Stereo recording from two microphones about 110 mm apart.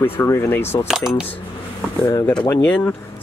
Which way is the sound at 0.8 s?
5° right (ahead or behind).